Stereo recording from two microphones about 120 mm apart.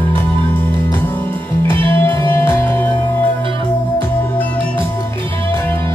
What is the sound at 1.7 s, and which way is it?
Music, 15° left (ahead or behind).